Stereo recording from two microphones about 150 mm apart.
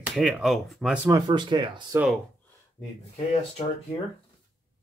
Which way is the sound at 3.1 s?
50° left (ahead or behind).